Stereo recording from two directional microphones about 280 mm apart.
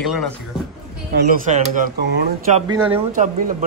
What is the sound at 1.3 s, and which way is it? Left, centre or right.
Speech, right.